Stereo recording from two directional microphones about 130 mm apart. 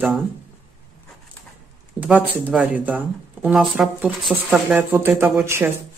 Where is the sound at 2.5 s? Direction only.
Centre (ahead or behind).